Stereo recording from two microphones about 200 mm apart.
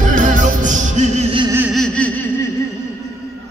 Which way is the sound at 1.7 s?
5° left (ahead or behind).